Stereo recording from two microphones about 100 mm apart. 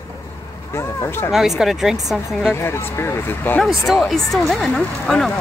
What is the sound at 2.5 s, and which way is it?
Speech, 25° left (ahead or behind).